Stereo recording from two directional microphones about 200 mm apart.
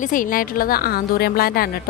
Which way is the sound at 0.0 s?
40° left (ahead or behind).